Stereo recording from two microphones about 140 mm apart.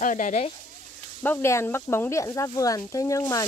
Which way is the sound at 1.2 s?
15° left (ahead or behind).